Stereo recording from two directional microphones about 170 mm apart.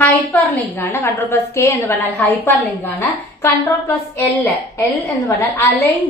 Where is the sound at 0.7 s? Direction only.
10° left (ahead or behind).